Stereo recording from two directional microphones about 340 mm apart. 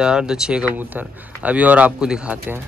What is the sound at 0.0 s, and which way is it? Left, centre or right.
Speech, centre.